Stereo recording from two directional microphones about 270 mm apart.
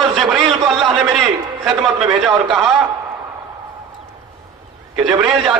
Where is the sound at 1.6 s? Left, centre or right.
Centre.